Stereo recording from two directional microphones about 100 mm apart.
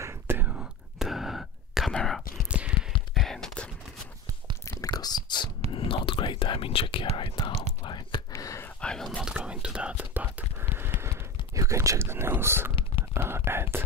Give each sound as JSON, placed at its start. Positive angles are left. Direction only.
{"t": 0.0, "sound": "whispering", "side_deg": -25}
{"t": 0.5, "sound": "whispering", "side_deg": -5}
{"t": 2.4, "sound": "a sound", "side_deg": -10}
{"t": 2.9, "sound": "whispering", "side_deg": 0}
{"t": 4.6, "sound": "whispering", "side_deg": 40}
{"t": 5.7, "sound": "whispering", "side_deg": 60}
{"t": 8.3, "sound": "whispering", "side_deg": 30}
{"t": 8.6, "sound": "whispering", "side_deg": 5}
{"t": 9.2, "sound": "whispering", "side_deg": -5}